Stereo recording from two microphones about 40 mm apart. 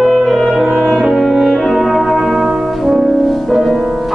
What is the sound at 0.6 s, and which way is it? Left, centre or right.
Brass instrument, centre.